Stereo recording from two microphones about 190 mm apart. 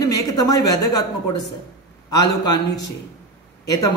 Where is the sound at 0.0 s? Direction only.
20° left (ahead or behind).